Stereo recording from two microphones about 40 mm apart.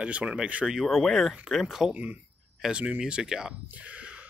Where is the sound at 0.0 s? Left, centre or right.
Right.